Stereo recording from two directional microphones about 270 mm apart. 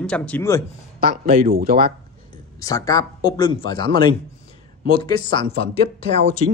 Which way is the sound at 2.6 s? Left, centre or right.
Centre.